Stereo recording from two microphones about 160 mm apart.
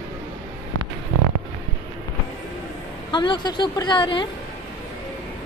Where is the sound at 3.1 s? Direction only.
30° left (ahead or behind).